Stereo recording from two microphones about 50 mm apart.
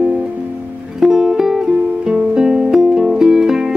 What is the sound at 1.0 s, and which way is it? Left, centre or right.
Music, centre.